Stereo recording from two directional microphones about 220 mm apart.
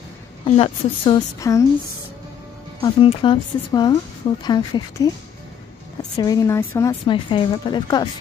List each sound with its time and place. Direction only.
0.6 s speech: 25° left (ahead or behind)
2.8 s speech: 25° left (ahead or behind)
6.1 s speech: 15° left (ahead or behind)